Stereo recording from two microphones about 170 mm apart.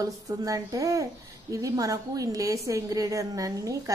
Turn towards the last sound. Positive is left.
turn(degrees=-20)  # may be behind; listen again after turning